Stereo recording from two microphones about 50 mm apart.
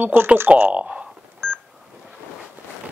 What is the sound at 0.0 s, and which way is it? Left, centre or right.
Speech, right.